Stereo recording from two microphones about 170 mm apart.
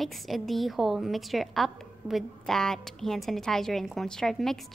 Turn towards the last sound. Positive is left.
turn(degrees=0)  # may be behind; listen again after turning